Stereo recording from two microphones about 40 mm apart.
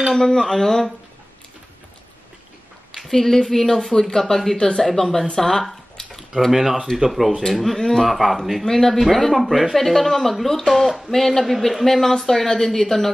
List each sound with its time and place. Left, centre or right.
0.1 s a woman's voice: centre
3.0 s a woman's voice: centre
4.6 s speech: centre
4.8 s a woman's voice: centre
6.0 s a sound: centre
6.5 s speech: centre
8.6 s a woman's voice: centre